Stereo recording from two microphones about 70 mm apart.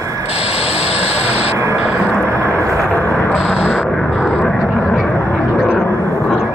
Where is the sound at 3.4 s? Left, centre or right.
Centre.